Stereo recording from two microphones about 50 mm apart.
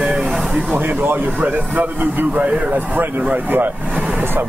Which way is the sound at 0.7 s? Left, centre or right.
Right.